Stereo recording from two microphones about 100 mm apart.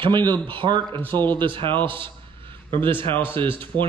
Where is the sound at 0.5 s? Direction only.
50° right (ahead or behind).